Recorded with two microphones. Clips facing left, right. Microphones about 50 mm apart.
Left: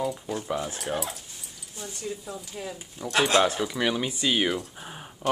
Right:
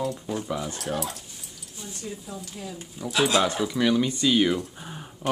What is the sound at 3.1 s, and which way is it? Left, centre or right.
Speech, left.